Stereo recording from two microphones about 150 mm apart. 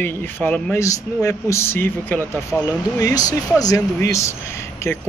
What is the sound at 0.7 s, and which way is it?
Speech, 20° left (ahead or behind).